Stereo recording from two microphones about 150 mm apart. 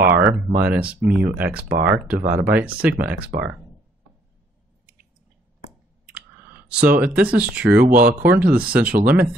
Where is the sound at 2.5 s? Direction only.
10° right (ahead or behind).